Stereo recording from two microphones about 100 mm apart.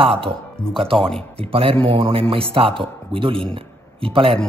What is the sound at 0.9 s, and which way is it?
Speech, 5° left (ahead or behind).